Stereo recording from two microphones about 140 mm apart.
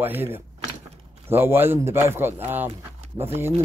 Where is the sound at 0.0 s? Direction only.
15° right (ahead or behind).